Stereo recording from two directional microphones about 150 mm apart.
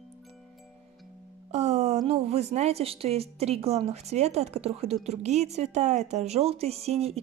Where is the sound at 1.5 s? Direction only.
45° right (ahead or behind).